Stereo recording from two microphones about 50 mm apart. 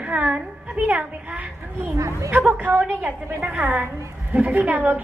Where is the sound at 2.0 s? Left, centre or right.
Right.